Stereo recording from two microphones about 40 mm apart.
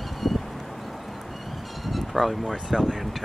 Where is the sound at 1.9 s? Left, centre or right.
Centre.